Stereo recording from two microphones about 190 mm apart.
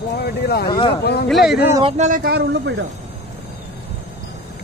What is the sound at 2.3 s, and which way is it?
Speech, 60° right (ahead or behind).